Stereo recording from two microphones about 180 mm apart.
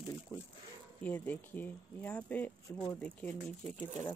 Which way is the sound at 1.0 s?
10° left (ahead or behind).